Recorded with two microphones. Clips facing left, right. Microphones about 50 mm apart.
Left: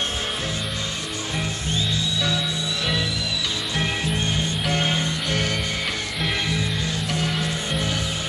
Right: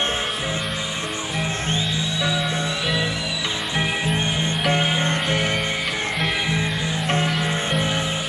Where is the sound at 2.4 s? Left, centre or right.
Right.